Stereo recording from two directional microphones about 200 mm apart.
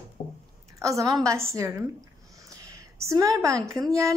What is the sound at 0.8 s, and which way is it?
A woman's voice, 15° right (ahead or behind).